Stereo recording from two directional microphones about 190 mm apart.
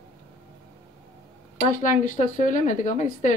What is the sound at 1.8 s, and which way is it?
A woman's voice, 40° left (ahead or behind).